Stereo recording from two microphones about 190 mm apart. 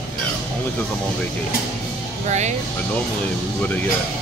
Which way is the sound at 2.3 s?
35° right (ahead or behind).